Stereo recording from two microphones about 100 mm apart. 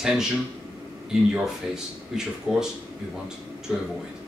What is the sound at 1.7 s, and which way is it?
Speech, 5° right (ahead or behind).